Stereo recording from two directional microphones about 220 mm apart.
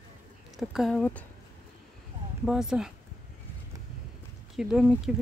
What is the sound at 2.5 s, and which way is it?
Speech, centre (ahead or behind).